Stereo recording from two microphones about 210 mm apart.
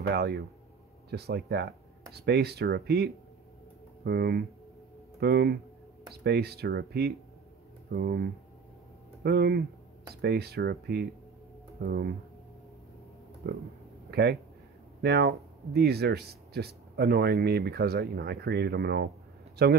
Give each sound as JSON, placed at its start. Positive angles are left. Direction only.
{"t": 0.0, "sound": "speech", "side_deg": -50}
{"t": 14.1, "sound": "speech", "side_deg": -50}